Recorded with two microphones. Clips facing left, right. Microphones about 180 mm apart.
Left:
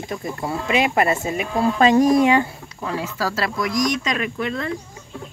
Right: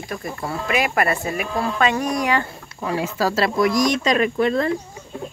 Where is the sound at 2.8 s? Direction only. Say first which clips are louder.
Right 3 dB; 20° right (ahead or behind); by 4.7 s 40° right (ahead or behind).